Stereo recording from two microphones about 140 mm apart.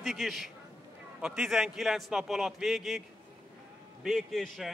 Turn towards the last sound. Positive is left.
turn(degrees=0)  # may be behind; listen again after turning